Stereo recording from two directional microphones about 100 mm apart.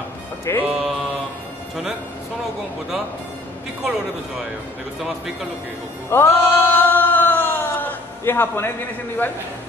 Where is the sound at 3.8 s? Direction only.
Centre (ahead or behind).